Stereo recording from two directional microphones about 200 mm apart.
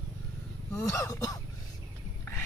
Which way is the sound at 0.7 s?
15° left (ahead or behind).